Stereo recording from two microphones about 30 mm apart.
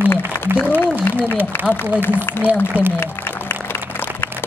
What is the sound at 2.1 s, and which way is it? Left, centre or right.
Speech, right.